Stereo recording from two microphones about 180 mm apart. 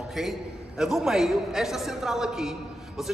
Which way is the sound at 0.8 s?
5° right (ahead or behind).